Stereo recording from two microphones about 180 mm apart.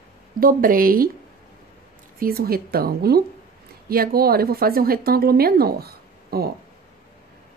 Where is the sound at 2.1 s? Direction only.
55° right (ahead or behind).